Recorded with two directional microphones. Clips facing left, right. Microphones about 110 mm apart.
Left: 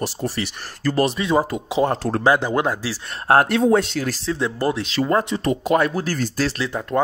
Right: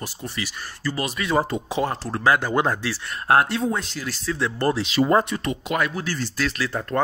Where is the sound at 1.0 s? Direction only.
20° left (ahead or behind).